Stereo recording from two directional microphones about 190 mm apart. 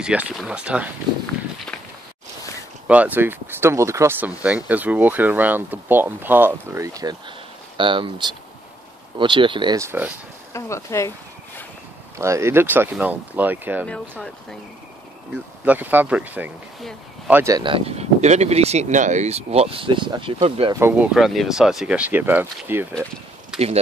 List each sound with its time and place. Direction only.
0.0 s speech: 5° right (ahead or behind)
2.9 s speech: 10° right (ahead or behind)
10.5 s a sound: 15° left (ahead or behind)
12.2 s speech: 15° right (ahead or behind)
13.8 s speech: 5° left (ahead or behind)
15.6 s speech: 10° right (ahead or behind); by 20.7 s 30° right (ahead or behind)
20.8 s speech: 5° right (ahead or behind)
23.5 s a sound: 5° right (ahead or behind)